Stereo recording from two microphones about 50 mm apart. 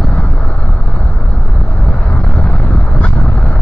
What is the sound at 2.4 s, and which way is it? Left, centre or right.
Vehicle, left.